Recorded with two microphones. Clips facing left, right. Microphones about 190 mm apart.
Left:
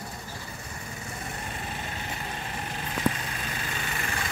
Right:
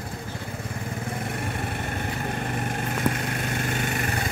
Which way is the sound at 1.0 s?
55° right (ahead or behind).